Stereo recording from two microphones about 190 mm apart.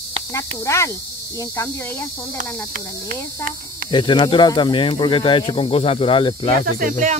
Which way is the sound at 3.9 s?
25° left (ahead or behind).